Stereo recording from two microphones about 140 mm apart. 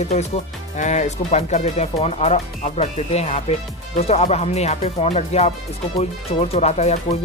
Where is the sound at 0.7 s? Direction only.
60° left (ahead or behind).